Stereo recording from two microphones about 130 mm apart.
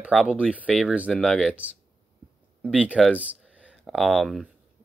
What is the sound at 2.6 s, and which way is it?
Speech, 10° right (ahead or behind).